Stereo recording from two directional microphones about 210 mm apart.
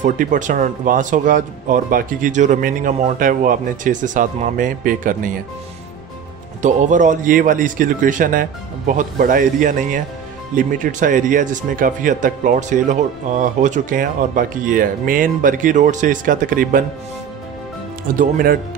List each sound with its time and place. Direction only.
0.0 s speech: 40° right (ahead or behind)
6.6 s speech: 35° right (ahead or behind)
18.1 s speech: 45° right (ahead or behind)